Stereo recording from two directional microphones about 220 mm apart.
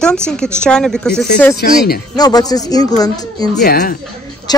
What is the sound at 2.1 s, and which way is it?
A woman's voice, 15° left (ahead or behind).